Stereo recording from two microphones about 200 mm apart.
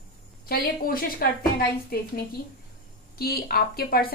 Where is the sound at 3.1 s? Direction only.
50° left (ahead or behind).